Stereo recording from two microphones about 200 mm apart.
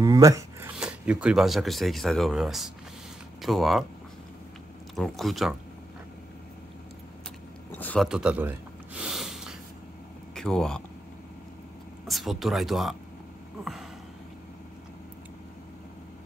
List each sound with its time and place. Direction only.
0.0 s a sound: 15° right (ahead or behind)
0.7 s speech: 5° right (ahead or behind)
4.9 s speech: centre (ahead or behind)
7.7 s sniff: 5° left (ahead or behind)
10.3 s speech: 5° left (ahead or behind)
12.1 s speech: centre (ahead or behind)